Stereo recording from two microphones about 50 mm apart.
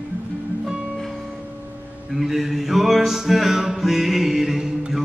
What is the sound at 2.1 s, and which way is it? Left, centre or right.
Music, centre.